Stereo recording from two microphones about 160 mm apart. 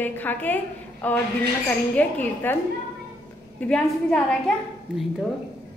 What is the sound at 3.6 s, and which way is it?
Speech, 5° left (ahead or behind).